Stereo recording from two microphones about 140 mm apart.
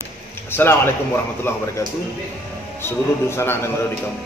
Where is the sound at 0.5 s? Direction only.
15° left (ahead or behind).